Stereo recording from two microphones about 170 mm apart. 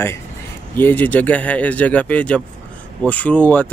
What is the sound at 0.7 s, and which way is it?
Speech, 10° left (ahead or behind).